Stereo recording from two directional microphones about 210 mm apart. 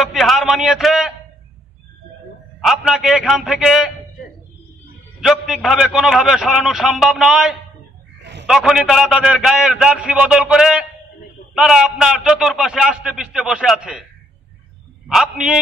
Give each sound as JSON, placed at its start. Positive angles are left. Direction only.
{"t": 0.0, "sound": "a man's voice", "side_deg": 0}
{"t": 2.6, "sound": "a man's voice", "side_deg": 0}
{"t": 5.2, "sound": "a man's voice", "side_deg": 0}
{"t": 8.2, "sound": "a sound", "side_deg": -55}
{"t": 8.5, "sound": "a man's voice", "side_deg": 0}
{"t": 15.0, "sound": "a man's voice", "side_deg": 0}